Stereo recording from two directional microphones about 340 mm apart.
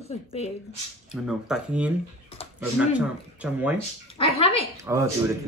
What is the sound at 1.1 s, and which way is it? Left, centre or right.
Speech, centre.